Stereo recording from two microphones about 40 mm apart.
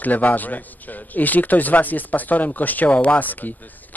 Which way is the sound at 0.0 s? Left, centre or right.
Left.